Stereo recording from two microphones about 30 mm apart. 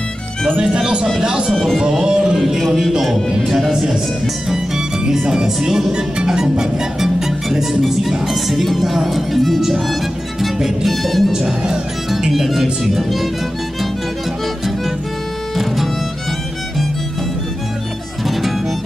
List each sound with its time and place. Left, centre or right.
1.2 s speech: right
1.5 s speech: centre
1.8 s speech: right
2.3 s music: centre
5.2 s speech: right
7.0 s music: centre
15.5 s music: centre
18.2 s music: centre